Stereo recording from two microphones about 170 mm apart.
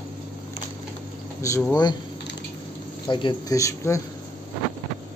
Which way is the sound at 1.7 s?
25° left (ahead or behind).